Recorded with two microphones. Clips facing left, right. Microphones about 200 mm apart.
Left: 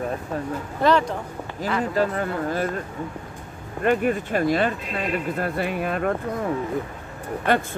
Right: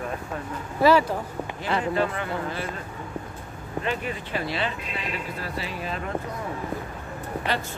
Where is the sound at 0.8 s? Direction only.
5° right (ahead or behind).